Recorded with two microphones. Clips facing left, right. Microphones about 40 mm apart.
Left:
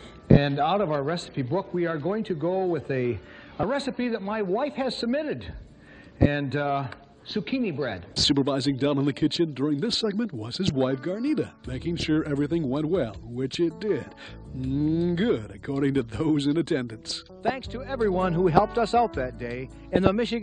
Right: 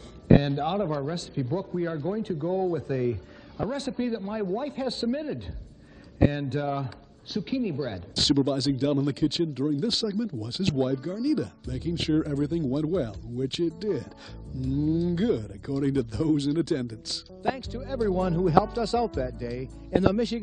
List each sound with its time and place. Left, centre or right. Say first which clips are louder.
0.4 s speech: left 4 dB; left